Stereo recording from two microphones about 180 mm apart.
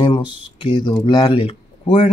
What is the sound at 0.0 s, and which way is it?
Speech, 25° left (ahead or behind).